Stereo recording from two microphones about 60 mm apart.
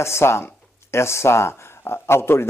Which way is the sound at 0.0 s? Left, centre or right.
Left.